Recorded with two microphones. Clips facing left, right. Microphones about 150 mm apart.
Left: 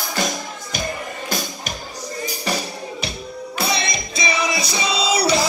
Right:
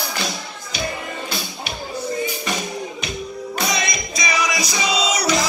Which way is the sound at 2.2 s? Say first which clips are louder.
Even; 35° left (ahead or behind).